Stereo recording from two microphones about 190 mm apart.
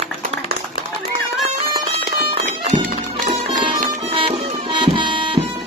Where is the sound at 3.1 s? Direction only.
40° right (ahead or behind).